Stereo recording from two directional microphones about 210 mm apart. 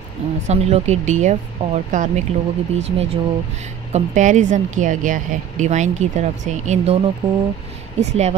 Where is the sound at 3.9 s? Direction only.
35° right (ahead or behind).